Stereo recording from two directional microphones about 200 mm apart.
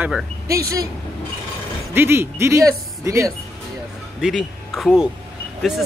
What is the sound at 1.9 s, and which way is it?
Speech, 10° right (ahead or behind).